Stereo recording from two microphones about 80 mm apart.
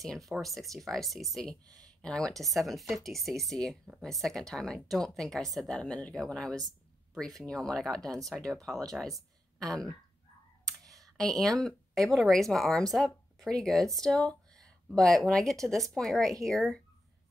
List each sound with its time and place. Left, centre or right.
0.0 s speech: centre
1.5 s speech: right
2.0 s speech: centre
2.3 s speech: centre
11.0 s speech: centre